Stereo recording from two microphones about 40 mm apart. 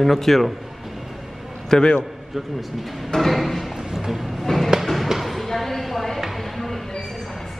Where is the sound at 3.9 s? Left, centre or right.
Centre.